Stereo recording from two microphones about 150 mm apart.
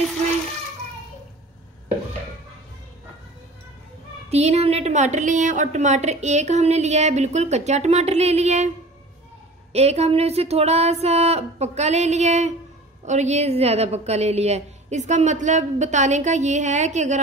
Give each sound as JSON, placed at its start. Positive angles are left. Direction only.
{"t": 4.3, "sound": "a woman's voice", "side_deg": -45}
{"t": 9.7, "sound": "a woman's voice", "side_deg": -45}